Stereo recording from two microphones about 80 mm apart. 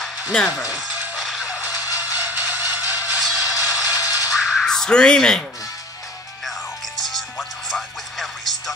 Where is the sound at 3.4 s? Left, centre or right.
Left.